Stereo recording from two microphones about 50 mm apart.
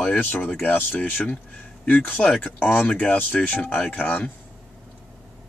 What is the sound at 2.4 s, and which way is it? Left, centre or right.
Speech, left.